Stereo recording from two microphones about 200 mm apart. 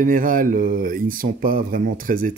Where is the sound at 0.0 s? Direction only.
45° right (ahead or behind).